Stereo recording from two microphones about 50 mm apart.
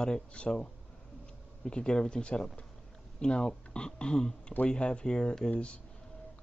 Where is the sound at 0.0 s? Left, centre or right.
Centre.